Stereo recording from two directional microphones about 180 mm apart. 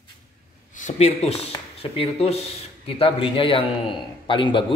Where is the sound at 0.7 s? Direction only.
40° left (ahead or behind).